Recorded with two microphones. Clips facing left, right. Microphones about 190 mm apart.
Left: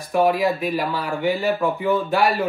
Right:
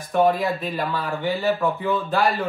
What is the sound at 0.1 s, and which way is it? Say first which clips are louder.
Speech: left 1 dB; 5° left (ahead or behind).